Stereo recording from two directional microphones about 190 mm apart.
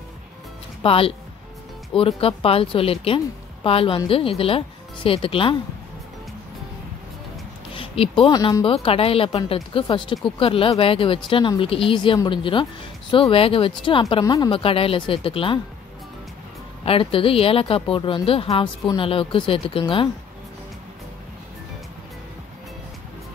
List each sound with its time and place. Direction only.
0.8 s speech: 30° left (ahead or behind)
7.7 s speech: 30° left (ahead or behind)
16.8 s speech: 30° left (ahead or behind)